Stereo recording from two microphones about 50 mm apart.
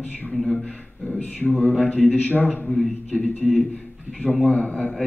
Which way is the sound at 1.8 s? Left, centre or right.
Left.